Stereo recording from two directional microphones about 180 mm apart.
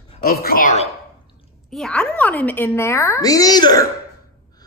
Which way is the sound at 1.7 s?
5° left (ahead or behind).